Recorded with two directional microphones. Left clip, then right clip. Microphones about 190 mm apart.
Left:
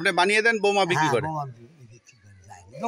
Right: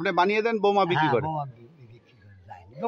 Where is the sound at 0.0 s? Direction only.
15° left (ahead or behind).